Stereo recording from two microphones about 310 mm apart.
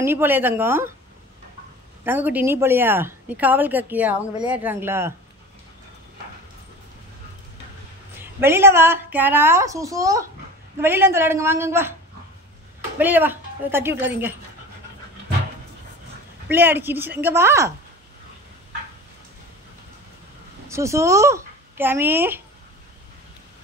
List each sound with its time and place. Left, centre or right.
0.0 s speech: centre
2.0 s speech: centre
8.2 s speech: centre
13.0 s speech: centre
16.4 s speech: centre
20.6 s speech: centre